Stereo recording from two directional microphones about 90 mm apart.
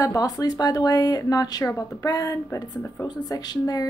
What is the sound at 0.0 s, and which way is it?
Speech, 45° left (ahead or behind).